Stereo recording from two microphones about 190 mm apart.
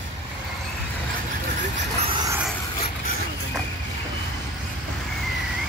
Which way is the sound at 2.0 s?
25° right (ahead or behind).